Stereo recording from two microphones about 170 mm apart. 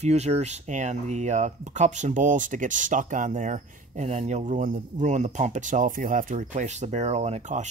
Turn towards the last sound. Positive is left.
turn(degrees=-40)  # may be behind; listen again after turning